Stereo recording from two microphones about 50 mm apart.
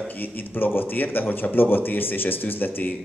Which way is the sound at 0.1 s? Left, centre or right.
Left.